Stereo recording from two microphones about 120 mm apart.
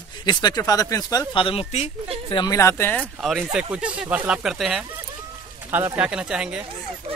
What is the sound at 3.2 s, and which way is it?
Speech, centre (ahead or behind).